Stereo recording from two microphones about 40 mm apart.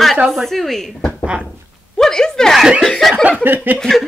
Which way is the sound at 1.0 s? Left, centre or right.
Left.